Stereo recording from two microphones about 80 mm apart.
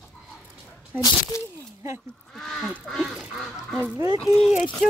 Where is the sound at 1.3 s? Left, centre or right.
Left.